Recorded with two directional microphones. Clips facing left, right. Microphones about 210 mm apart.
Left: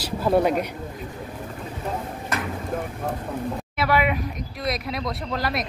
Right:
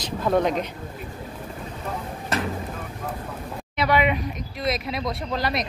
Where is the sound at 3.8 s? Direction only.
5° left (ahead or behind).